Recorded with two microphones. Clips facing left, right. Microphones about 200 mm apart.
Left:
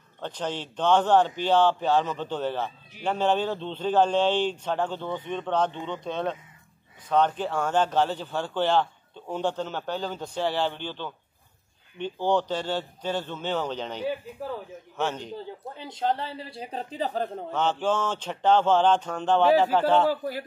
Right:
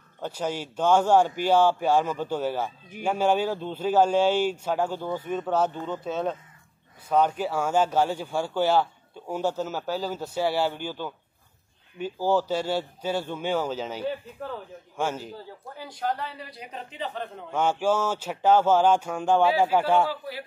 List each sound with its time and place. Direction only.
0.2 s speech: 10° right (ahead or behind)
15.3 s speech: 25° left (ahead or behind)
17.5 s speech: 10° right (ahead or behind)
20.1 s a man's voice: 45° left (ahead or behind)